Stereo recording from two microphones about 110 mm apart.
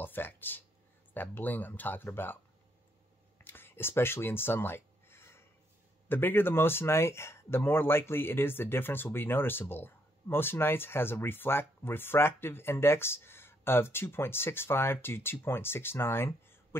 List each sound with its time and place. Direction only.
0.0 s speech: 20° left (ahead or behind)
3.4 s a sound: 20° left (ahead or behind)
6.0 s speech: 20° left (ahead or behind)